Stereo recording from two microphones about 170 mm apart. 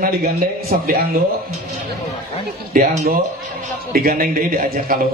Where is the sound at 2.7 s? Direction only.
50° right (ahead or behind).